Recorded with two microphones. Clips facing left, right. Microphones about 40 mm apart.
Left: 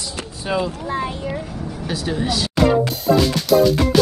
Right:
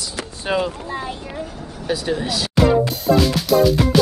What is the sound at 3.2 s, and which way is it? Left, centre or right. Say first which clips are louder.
Music: left 1 dB; centre.